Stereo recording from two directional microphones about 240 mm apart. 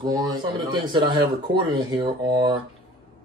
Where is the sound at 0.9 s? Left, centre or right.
Centre.